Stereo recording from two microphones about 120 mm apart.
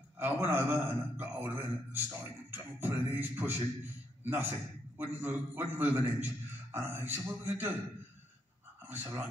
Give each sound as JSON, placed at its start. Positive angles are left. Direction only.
{"t": 0.2, "sound": "a man's voice", "side_deg": -20}
{"t": 8.8, "sound": "speech", "side_deg": -20}